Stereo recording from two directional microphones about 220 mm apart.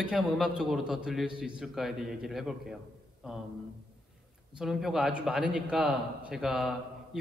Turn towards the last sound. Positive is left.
turn(degrees=0)  # may be behind; listen again after turning